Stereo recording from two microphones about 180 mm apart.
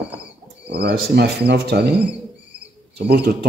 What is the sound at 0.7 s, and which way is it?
A man's voice, 60° right (ahead or behind).